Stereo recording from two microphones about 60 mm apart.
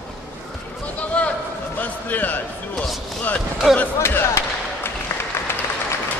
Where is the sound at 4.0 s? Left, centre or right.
Left.